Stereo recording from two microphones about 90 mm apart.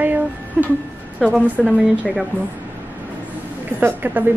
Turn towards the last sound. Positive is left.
turn(degrees=-20)  # may be behind; listen again after turning